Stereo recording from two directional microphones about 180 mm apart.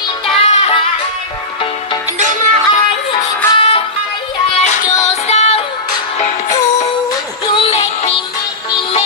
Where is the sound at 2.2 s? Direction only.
45° right (ahead or behind).